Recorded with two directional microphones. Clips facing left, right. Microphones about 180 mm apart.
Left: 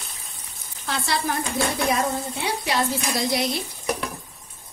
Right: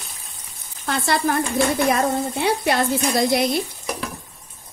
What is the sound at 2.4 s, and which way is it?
Speech, 55° right (ahead or behind).